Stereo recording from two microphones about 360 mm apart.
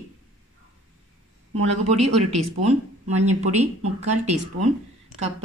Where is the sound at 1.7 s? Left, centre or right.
Centre.